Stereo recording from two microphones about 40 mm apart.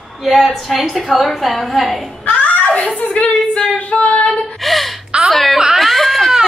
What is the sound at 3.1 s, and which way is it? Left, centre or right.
Speech, left.